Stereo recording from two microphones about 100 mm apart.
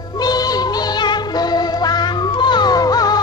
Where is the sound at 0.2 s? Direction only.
40° left (ahead or behind).